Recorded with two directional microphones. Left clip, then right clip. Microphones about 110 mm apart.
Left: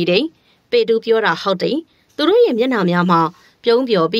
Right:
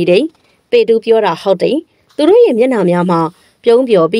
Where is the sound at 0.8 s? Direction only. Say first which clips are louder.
Right 5 dB; 35° right (ahead or behind).